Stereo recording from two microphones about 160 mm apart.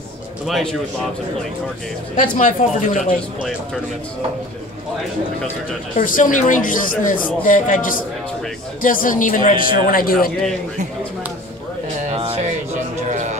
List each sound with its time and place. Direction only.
0.5 s a man's voice: centre (ahead or behind)
2.3 s speech: 50° left (ahead or behind)
5.9 s speech: 55° left (ahead or behind)
12.1 s a sound: 35° right (ahead or behind)
13.1 s music: 50° right (ahead or behind)